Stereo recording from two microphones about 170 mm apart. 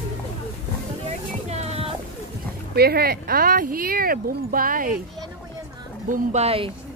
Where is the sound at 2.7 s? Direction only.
65° right (ahead or behind).